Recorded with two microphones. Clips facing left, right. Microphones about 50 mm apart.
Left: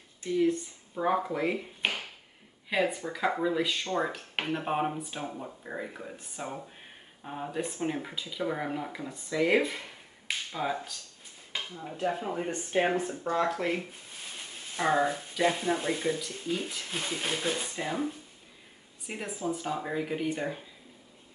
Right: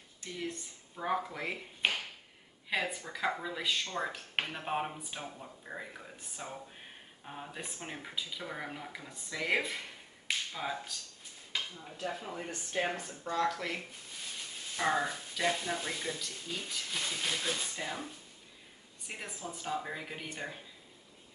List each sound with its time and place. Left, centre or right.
0.2 s speech: centre
3.8 s speech: centre
4.1 s speech: centre
7.5 s speech: centre
11.7 s speech: left
19.0 s speech: centre